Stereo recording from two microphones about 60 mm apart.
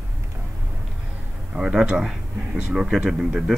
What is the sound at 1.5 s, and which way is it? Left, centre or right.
Speech, centre.